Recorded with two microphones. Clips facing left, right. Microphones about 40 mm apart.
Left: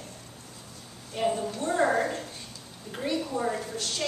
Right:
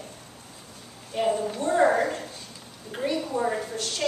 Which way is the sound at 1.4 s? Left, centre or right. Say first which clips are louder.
Right 4 dB; right.